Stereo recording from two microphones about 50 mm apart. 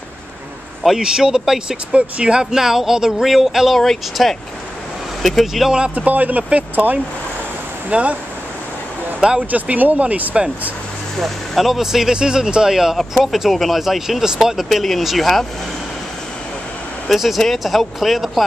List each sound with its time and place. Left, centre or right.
0.8 s speech: centre
3.8 s speech: centre
5.9 s speech: right
9.5 s speech: right
11.1 s speech: centre
17.1 s speech: centre